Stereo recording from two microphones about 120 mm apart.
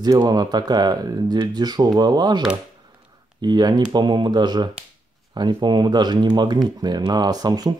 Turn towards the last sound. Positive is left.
turn(degrees=-35)  # may be behind; listen again after turning